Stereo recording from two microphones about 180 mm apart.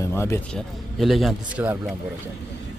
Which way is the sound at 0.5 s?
Centre (ahead or behind).